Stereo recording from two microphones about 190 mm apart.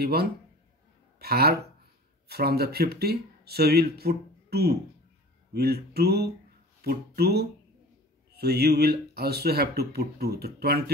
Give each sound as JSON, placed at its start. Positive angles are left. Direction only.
{"t": 0.0, "sound": "speech", "side_deg": -55}